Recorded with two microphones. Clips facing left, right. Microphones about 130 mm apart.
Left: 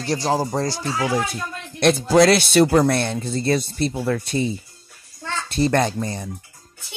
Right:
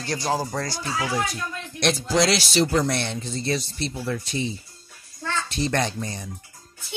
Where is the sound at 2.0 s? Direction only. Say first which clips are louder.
Left 8 dB; 55° left (ahead or behind).